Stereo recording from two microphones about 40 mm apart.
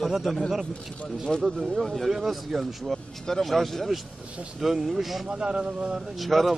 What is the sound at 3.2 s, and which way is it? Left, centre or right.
Speech, centre.